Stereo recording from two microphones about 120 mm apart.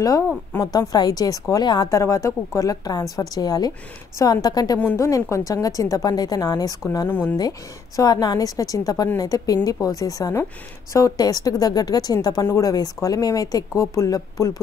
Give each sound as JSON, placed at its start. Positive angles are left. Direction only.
{"t": 0.6, "sound": "a woman's voice", "side_deg": 35}
{"t": 7.1, "sound": "speech", "side_deg": 15}
{"t": 7.3, "sound": "a woman's voice", "side_deg": 30}